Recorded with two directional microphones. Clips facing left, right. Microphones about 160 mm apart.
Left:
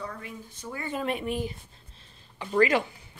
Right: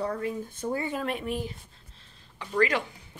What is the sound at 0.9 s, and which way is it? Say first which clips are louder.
Speech: left 1 dB; centre (ahead or behind).